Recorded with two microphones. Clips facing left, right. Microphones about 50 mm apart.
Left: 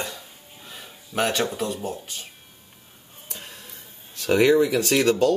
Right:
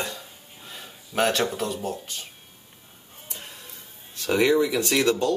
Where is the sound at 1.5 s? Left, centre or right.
Centre.